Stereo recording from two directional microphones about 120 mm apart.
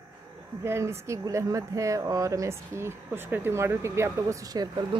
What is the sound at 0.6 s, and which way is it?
Speech, 20° right (ahead or behind).